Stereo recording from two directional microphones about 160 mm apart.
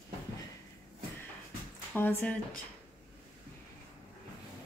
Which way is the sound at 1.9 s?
10° left (ahead or behind).